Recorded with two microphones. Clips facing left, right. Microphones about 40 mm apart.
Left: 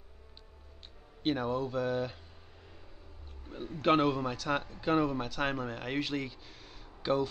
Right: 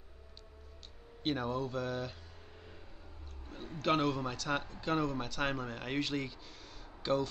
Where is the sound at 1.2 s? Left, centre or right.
Centre.